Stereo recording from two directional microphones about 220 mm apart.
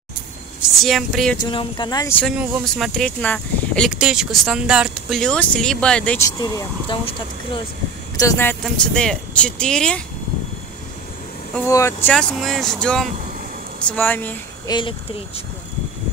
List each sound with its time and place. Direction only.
0.6 s speech: centre (ahead or behind)
1.4 s speech: 20° left (ahead or behind); by 10.0 s 5° left (ahead or behind)
11.5 s speech: 10° left (ahead or behind)
14.7 s speech: 20° left (ahead or behind)